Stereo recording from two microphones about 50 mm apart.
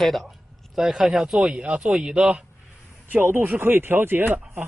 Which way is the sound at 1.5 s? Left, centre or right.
Right.